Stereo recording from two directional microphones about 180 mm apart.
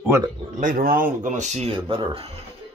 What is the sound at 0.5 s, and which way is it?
Speech, 50° right (ahead or behind).